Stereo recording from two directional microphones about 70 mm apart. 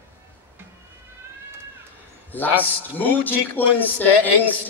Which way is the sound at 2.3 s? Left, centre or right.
Left.